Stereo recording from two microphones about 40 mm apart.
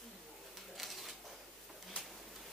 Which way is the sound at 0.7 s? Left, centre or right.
Centre.